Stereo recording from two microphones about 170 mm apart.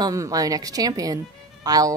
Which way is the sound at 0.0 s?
20° right (ahead or behind).